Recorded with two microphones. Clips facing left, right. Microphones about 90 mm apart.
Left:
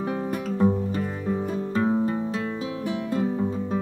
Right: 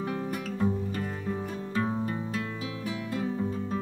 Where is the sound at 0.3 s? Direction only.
30° left (ahead or behind).